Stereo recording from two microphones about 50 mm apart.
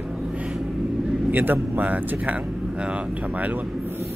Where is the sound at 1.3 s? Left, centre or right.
Right.